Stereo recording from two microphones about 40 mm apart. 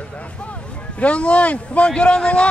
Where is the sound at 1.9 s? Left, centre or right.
Left.